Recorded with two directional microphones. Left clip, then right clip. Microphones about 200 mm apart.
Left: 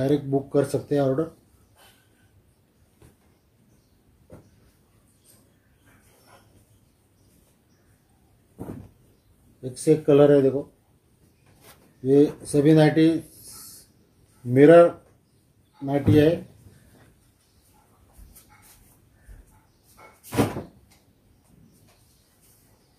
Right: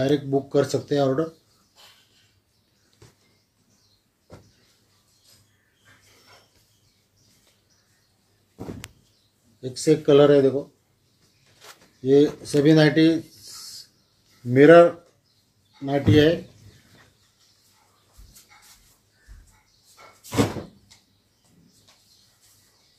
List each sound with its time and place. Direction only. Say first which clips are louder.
0.0 s speech: right 1 dB; 5° left (ahead or behind)
9.6 s speech: even; 5° left (ahead or behind)
12.0 s speech: right 1 dB; 5° left (ahead or behind)
14.5 s speech: right 1 dB; 10° left (ahead or behind)